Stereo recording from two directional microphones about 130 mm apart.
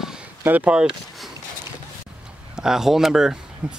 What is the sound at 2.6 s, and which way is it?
Speech, 5° right (ahead or behind).